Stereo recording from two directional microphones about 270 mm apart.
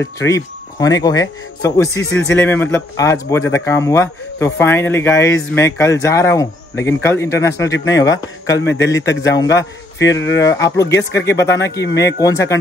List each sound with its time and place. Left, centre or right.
0.0 s speech: centre
9.9 s speech: left
10.3 s speech: centre
11.8 s speech: left
12.2 s speech: centre